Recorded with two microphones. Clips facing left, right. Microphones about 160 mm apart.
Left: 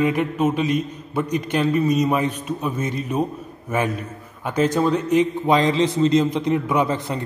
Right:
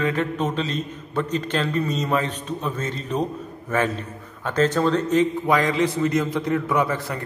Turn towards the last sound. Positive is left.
turn(degrees=20)  # may be behind; listen again after turning